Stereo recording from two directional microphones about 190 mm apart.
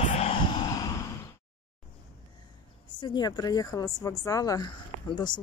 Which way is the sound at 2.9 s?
25° left (ahead or behind).